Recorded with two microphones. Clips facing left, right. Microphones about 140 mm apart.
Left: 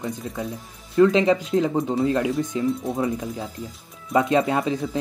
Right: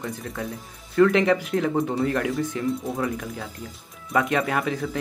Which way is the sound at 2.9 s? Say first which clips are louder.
Left 3 dB; 25° left (ahead or behind).